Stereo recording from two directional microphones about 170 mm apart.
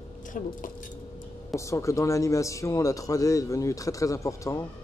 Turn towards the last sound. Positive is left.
turn(degrees=20)  # may be behind; listen again after turning